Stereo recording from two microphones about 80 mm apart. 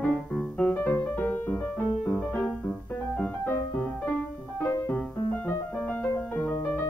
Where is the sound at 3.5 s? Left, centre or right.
Left.